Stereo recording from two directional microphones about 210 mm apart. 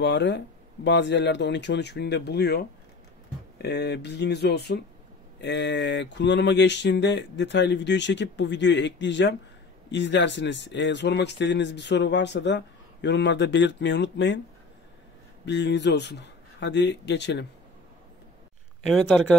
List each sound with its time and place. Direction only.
0.0 s speech: 55° left (ahead or behind)
15.4 s speech: 55° left (ahead or behind)
18.9 s speech: centre (ahead or behind)